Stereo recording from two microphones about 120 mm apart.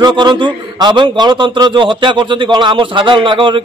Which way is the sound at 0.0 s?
40° right (ahead or behind).